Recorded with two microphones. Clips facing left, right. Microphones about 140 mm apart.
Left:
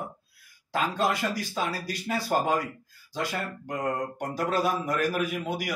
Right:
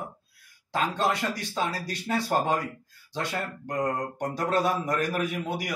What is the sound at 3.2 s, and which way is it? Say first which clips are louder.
Speech: even; 5° left (ahead or behind).